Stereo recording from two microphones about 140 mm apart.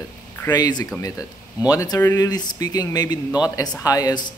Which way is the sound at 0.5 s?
25° left (ahead or behind).